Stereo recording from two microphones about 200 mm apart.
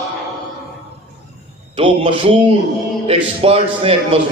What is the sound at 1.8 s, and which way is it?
A man's voice, 25° right (ahead or behind).